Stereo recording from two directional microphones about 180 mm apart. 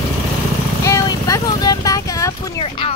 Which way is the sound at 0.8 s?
15° left (ahead or behind).